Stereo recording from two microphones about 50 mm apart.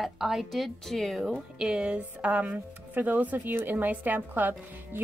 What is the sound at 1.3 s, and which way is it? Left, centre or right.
Speech, centre.